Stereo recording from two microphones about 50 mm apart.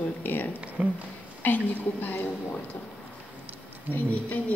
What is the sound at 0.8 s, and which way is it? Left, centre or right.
Speech, right.